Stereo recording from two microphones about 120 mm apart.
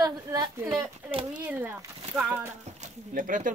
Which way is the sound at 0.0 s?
30° right (ahead or behind).